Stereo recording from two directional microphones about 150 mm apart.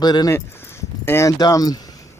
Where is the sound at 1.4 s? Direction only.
25° left (ahead or behind).